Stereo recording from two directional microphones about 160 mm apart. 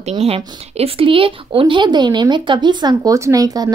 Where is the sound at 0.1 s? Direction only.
40° right (ahead or behind).